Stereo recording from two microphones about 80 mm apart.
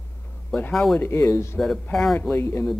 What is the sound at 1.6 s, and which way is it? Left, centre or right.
Speech, centre.